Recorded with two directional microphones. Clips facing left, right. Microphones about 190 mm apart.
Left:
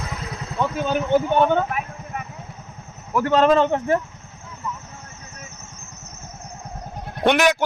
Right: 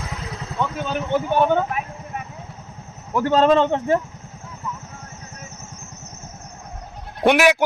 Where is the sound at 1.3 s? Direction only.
10° right (ahead or behind).